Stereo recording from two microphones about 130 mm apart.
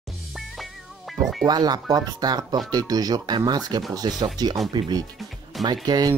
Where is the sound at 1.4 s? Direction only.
30° right (ahead or behind).